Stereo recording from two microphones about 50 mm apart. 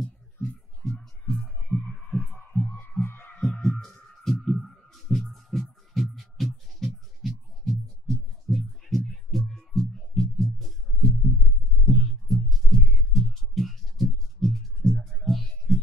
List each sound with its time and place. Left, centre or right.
0.0 s music: centre
1.7 s heart sounds: left
3.0 s heart sounds: left
3.6 s heart sounds: centre
4.2 s a sound: centre
4.6 s heart sounds: centre
6.1 s music: centre
15.0 s music: centre
15.2 s music: centre